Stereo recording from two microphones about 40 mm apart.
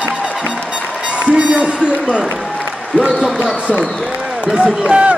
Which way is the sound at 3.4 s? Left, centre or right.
Right.